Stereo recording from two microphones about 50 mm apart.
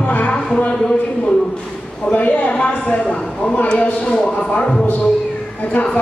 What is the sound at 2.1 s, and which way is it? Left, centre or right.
Speech, left.